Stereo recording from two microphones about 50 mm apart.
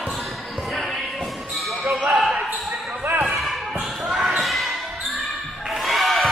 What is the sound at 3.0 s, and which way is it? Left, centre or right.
Basketball bounce, right.